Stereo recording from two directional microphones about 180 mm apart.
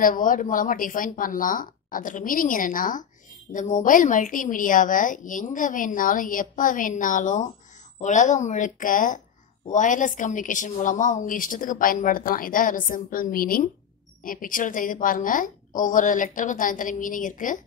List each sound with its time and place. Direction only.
0.0 s a woman's voice: 50° left (ahead or behind)